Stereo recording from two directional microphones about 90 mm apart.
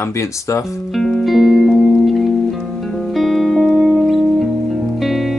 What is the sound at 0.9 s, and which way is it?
Music, centre (ahead or behind).